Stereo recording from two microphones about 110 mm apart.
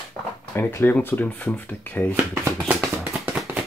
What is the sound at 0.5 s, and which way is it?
Speech, 20° left (ahead or behind).